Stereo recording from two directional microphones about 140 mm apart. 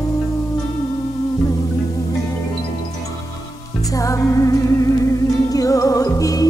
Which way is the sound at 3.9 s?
25° left (ahead or behind).